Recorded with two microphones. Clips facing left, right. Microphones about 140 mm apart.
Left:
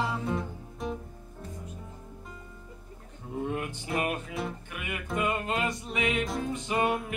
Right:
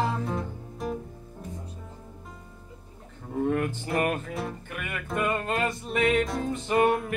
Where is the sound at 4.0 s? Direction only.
50° right (ahead or behind).